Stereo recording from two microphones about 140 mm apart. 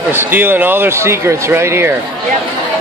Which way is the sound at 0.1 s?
15° right (ahead or behind).